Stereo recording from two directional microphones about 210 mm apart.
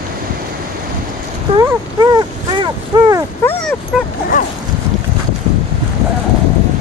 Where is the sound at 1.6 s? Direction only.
20° right (ahead or behind).